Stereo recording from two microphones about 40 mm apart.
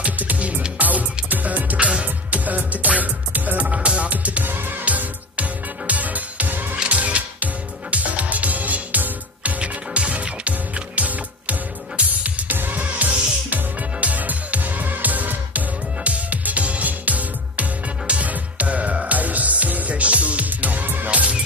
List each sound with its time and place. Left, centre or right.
0.0 s music: right
0.7 s music: right
6.9 s music: right
12.5 s music: right